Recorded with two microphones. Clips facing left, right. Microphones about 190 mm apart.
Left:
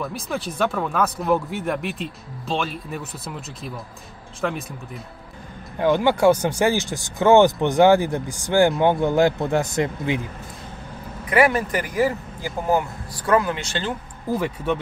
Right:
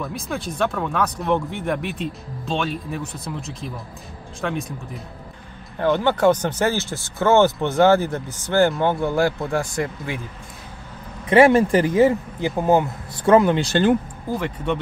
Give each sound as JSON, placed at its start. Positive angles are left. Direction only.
{"t": 0.0, "sound": "speech", "side_deg": 0}
{"t": 5.8, "sound": "speech", "side_deg": 15}
{"t": 11.2, "sound": "speech", "side_deg": -25}
{"t": 14.3, "sound": "speech", "side_deg": 5}